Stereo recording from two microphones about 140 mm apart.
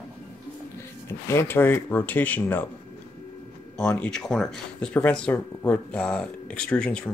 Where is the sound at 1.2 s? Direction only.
15° left (ahead or behind).